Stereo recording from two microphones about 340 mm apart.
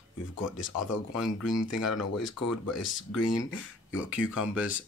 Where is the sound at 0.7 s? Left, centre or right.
Left.